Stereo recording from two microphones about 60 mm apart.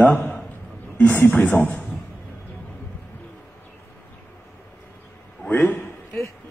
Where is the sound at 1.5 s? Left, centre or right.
Left.